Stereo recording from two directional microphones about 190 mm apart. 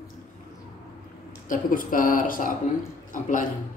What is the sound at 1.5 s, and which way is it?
A woman's voice, 45° left (ahead or behind).